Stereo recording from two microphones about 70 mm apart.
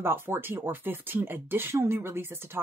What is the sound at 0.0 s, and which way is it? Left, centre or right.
Speech, right.